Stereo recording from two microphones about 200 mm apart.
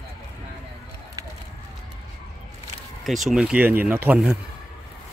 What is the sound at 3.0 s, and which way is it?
Speech, centre (ahead or behind).